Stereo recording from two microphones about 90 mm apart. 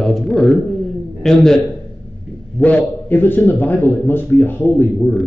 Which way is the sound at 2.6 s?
20° left (ahead or behind).